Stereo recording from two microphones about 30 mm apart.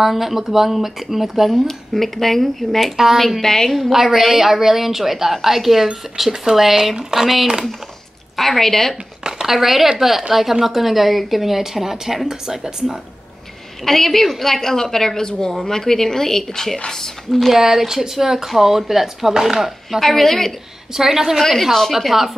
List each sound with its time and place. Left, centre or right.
0.0 s a woman's voice: centre
1.5 s a woman's voice: centre
2.8 s a woman's voice: centre
3.2 s a woman's voice: centre
3.7 s a woman's voice: centre
8.4 s a woman's voice: centre
9.5 s a woman's voice: centre
13.8 s a woman's voice: centre
17.6 s a woman's voice: centre
20.0 s a woman's voice: centre
20.9 s a woman's voice: centre
21.4 s a woman's voice: centre
22.1 s a woman's voice: centre